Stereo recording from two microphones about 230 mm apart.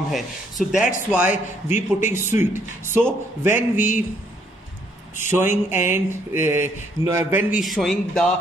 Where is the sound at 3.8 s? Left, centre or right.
Left.